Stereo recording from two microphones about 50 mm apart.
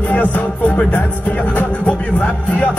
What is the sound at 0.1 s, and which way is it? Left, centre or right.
Music, left.